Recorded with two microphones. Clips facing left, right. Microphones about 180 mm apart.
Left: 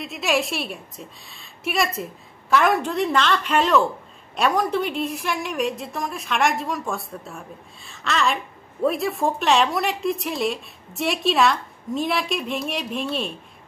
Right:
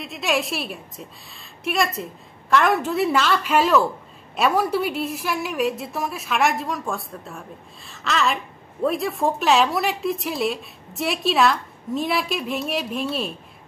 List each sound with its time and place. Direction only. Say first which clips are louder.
0.0 s a woman's voice: left 1 dB; centre (ahead or behind)